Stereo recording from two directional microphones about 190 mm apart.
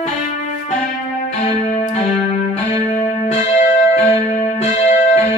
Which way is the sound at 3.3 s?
35° left (ahead or behind).